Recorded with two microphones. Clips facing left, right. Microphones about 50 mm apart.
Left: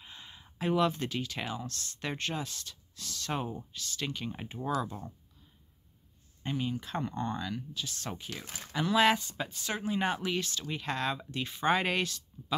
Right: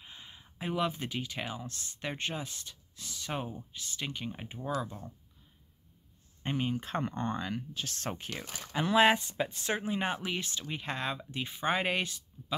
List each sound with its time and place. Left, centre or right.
0.0 s speech: centre
4.7 s speech: centre
6.4 s speech: right
8.7 s speech: right
9.8 s speech: centre